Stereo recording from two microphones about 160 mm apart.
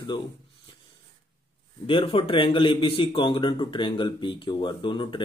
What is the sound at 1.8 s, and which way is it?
A man's voice, 30° left (ahead or behind).